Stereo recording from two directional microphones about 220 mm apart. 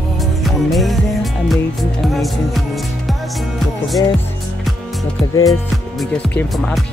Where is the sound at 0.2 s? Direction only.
Centre (ahead or behind).